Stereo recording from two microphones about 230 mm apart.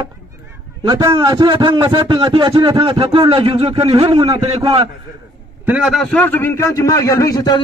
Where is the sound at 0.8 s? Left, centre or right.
Centre.